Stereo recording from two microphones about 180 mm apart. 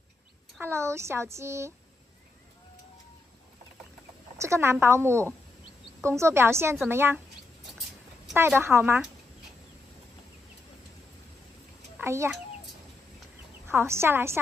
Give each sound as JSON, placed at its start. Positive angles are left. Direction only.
{"t": 0.6, "sound": "speech", "side_deg": -15}
{"t": 4.4, "sound": "speech", "side_deg": -15}
{"t": 8.4, "sound": "speech", "side_deg": -15}
{"t": 12.0, "sound": "a child's voice", "side_deg": -15}
{"t": 13.7, "sound": "speech", "side_deg": -15}